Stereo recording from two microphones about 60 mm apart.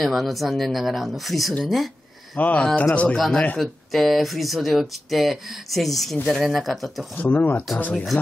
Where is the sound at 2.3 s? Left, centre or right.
Left.